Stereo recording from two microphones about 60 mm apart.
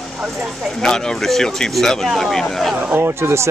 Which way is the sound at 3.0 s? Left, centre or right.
Right.